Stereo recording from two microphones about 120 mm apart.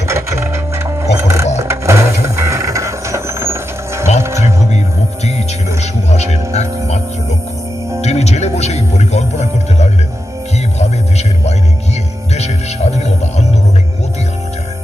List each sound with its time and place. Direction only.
0.1 s music: 25° right (ahead or behind)
1.6 s a sound: 25° right (ahead or behind)
4.2 s music: 25° right (ahead or behind)
4.7 s music: 70° left (ahead or behind)
8.0 s music: 65° left (ahead or behind)